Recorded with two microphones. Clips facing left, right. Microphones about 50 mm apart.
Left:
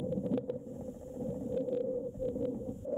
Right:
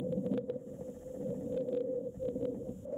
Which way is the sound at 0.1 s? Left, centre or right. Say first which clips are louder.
Left 1 dB; centre.